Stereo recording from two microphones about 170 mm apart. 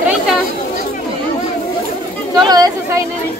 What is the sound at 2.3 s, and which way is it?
Speech, 20° right (ahead or behind).